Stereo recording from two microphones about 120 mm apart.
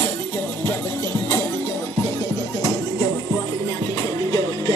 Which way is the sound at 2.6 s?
25° left (ahead or behind).